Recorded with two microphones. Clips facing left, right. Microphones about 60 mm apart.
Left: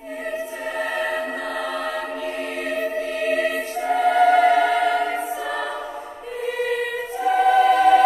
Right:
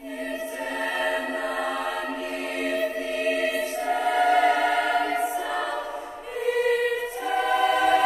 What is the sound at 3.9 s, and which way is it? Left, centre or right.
Choir, centre.